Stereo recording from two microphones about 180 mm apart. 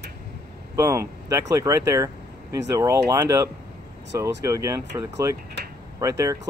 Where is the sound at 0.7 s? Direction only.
15° right (ahead or behind).